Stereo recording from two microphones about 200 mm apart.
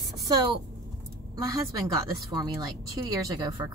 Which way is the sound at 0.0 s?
20° right (ahead or behind).